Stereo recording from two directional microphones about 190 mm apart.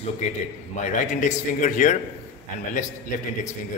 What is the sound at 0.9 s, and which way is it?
A man's voice, 40° left (ahead or behind).